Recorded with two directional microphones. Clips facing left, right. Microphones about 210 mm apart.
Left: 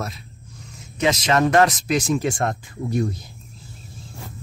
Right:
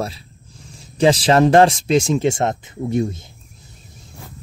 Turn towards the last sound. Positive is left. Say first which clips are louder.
# right 3 dB
turn(degrees=-25)  # may be behind; listen again after turning